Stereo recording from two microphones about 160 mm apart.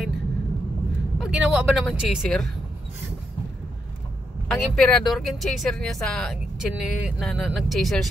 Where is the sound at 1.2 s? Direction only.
5° right (ahead or behind).